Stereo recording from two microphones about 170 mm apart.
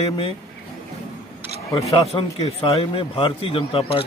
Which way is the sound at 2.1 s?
35° left (ahead or behind).